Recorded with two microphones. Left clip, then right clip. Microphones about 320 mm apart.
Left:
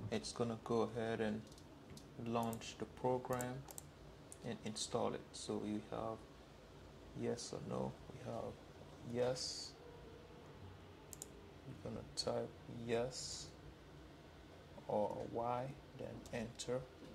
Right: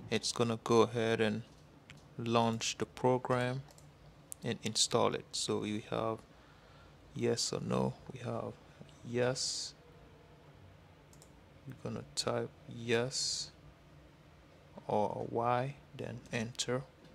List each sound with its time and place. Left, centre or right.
0.1 s speech: right
7.2 s speech: right
9.1 s speech: right
11.8 s speech: right
14.9 s speech: right